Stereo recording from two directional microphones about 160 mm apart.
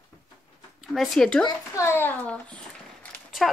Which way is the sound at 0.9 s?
Centre (ahead or behind).